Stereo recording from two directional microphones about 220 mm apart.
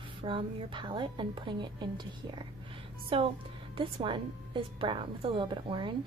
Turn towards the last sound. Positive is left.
turn(degrees=-20)  # may be behind; listen again after turning